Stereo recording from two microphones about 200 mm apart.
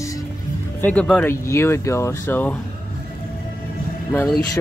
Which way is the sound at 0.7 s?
5° left (ahead or behind).